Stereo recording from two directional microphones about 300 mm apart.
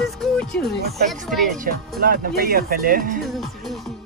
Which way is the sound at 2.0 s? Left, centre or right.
Right.